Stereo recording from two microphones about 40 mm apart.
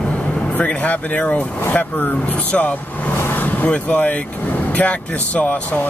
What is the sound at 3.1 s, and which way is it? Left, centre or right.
Vehicle, left.